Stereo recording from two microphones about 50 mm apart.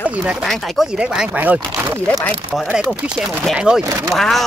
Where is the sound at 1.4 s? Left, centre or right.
Right.